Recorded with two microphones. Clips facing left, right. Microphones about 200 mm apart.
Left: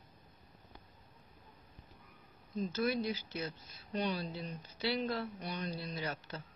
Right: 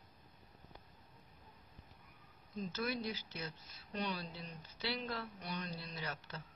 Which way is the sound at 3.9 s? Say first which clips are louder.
Left 5 dB; 25° left (ahead or behind).